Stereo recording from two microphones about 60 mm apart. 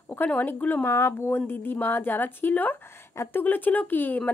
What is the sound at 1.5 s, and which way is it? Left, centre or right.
A woman's voice, left.